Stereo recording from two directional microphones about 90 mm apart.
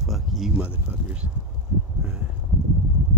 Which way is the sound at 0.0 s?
5° right (ahead or behind).